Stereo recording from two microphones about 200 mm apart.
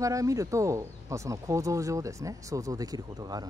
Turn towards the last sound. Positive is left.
turn(degrees=-20)  # may be behind; listen again after turning